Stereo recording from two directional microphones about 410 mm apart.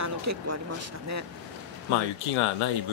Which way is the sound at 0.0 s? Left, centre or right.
Right.